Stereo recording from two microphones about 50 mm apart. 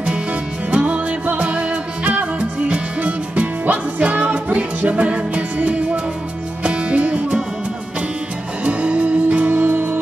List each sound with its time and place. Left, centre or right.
0.7 s music: right
8.6 s music: right
9.4 s music: right